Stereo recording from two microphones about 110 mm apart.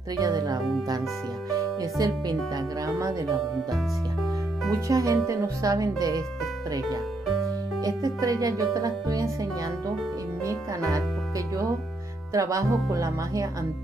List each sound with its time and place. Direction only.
0.1 s speech: 35° right (ahead or behind)
3.5 s speech: centre (ahead or behind)
4.7 s speech: 30° right (ahead or behind)
7.8 s speech: 35° right (ahead or behind)